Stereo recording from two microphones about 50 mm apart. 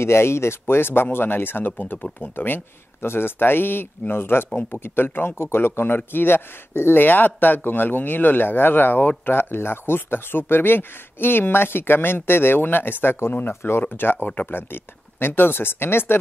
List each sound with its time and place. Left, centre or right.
0.0 s speech: left